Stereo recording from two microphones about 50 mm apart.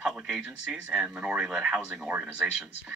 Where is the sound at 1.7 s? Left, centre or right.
Right.